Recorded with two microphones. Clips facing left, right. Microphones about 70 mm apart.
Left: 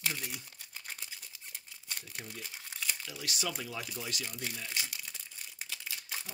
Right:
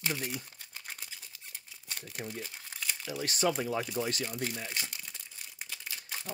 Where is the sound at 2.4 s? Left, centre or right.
Centre.